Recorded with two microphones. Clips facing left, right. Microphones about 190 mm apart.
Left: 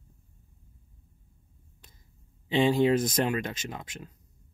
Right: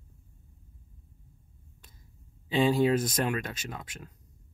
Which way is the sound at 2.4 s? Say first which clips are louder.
Left 1 dB; 25° left (ahead or behind).